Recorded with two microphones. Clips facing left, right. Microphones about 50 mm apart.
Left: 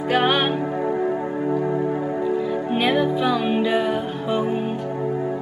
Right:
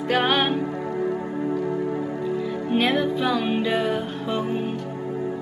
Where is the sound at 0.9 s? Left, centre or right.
Centre.